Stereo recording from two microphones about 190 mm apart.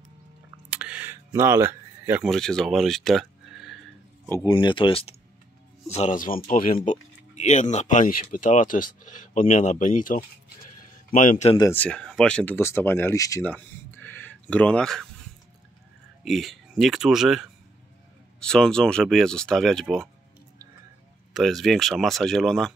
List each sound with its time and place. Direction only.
0.7 s a sound: 5° right (ahead or behind)
2.2 s speech: centre (ahead or behind)
4.5 s a man's voice: 25° left (ahead or behind)
11.7 s speech: 5° left (ahead or behind)
16.3 s speech: centre (ahead or behind)
21.3 s speech: centre (ahead or behind)